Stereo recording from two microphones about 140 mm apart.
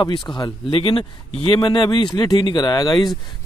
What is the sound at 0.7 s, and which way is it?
Speech, 40° left (ahead or behind).